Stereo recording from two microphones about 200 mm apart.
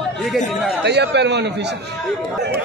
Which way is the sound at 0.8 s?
60° right (ahead or behind).